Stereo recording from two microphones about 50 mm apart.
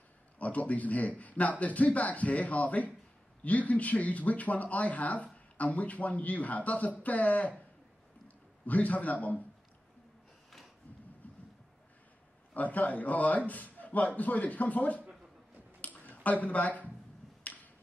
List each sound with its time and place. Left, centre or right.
0.4 s speech: left
8.6 s speech: left
11.2 s a sound: left
12.5 s speech: left
15.8 s a sound: left
17.4 s finger snapping: left